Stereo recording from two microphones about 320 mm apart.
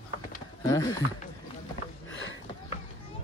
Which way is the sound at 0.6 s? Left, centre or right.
Centre.